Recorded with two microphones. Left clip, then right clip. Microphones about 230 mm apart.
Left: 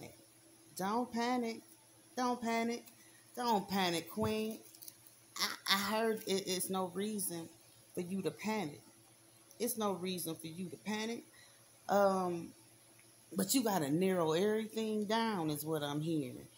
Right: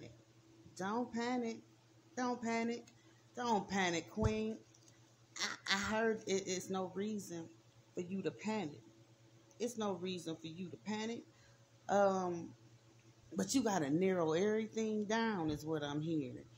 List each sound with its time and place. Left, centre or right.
0.7 s speech: left
13.4 s speech: left